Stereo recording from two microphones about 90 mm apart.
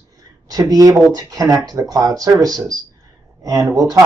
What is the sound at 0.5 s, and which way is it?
Speech, 40° right (ahead or behind).